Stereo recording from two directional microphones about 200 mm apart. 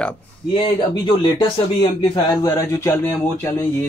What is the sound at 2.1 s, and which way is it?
Speech, 15° left (ahead or behind).